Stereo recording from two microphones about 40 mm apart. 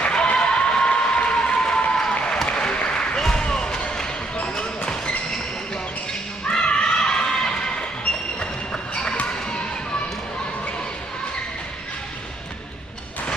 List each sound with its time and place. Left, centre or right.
0.0 s a sound: left
2.4 s applause: left
3.2 s basketball bounce: centre
6.5 s children shouting: left